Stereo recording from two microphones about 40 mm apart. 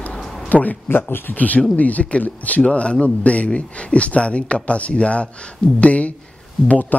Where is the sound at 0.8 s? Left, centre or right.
Left.